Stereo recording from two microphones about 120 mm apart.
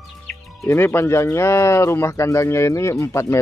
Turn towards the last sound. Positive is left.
turn(degrees=25)  # may be behind; listen again after turning